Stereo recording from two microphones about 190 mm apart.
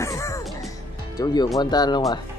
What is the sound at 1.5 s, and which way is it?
Speech, 20° left (ahead or behind).